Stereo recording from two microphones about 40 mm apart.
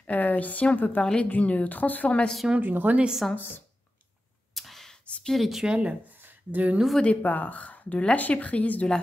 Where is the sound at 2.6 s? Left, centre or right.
Right.